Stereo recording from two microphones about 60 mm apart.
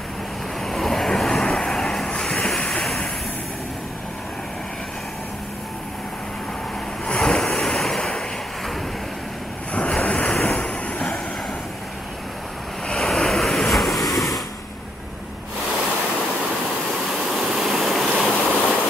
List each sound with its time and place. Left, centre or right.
0.6 s vehicle: centre
7.1 s waves: centre
10.0 s waves: centre
12.8 s waves: centre
17.3 s vehicle: centre
18.1 s stream: right